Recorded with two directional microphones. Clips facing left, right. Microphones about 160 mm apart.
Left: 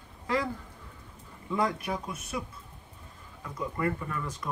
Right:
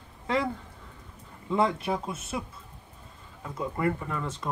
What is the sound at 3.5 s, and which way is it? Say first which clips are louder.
Speech: right 2 dB; 25° right (ahead or behind).